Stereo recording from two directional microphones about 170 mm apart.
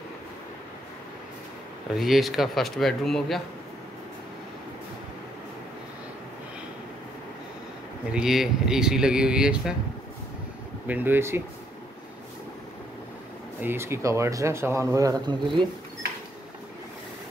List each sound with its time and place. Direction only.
2.0 s speech: centre (ahead or behind)
8.1 s speech: 5° right (ahead or behind)
10.9 s speech: 10° right (ahead or behind)
13.6 s speech: 15° right (ahead or behind)